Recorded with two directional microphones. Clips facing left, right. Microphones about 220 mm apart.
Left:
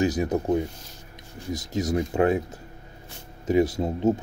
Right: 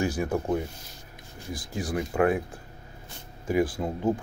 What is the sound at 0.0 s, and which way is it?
Speech, 20° left (ahead or behind).